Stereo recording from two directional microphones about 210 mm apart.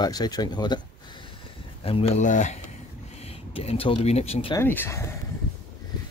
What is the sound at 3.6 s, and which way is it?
Speech, 25° left (ahead or behind).